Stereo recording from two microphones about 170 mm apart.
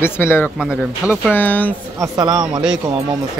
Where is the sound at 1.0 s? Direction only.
15° left (ahead or behind).